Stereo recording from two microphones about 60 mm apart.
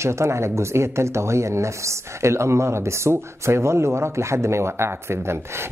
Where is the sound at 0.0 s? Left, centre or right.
Right.